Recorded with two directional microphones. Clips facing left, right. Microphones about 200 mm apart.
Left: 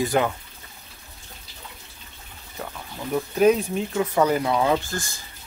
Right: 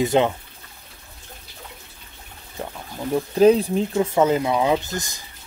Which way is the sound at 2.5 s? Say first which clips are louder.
Right 3 dB; 25° right (ahead or behind).